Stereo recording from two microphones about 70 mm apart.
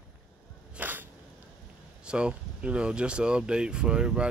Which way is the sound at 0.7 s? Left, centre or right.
Right.